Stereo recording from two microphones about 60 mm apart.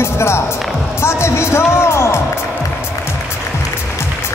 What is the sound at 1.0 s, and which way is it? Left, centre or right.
Speech, left.